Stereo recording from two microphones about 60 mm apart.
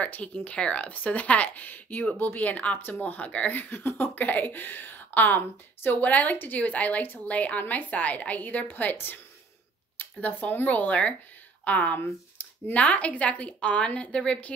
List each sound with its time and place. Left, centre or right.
0.0 s a woman's voice: left